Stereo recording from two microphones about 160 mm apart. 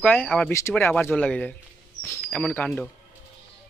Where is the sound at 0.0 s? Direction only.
10° left (ahead or behind).